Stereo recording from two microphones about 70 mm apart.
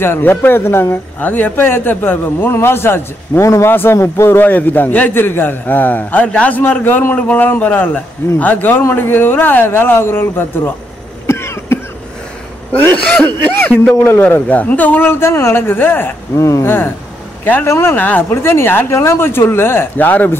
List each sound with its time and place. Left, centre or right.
0.0 s speech: left
1.2 s a man's voice: left
3.4 s a man's voice: left; by 6.6 s centre
6.6 s a man's voice: left
11.2 s cough: left
12.9 s a man's voice: left
16.3 s a man's voice: left
16.6 s speech: left
17.9 s a man's voice: left
18.3 s speech: left